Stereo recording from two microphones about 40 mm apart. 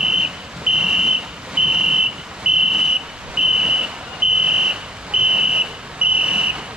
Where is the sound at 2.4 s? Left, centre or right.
Right.